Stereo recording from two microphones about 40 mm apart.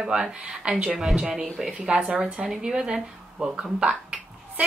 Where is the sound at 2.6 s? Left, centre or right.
Centre.